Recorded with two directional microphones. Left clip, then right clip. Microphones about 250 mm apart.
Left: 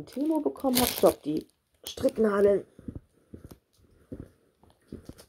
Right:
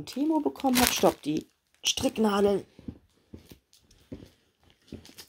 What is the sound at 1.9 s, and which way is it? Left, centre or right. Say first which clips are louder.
Speech: left 2 dB; right.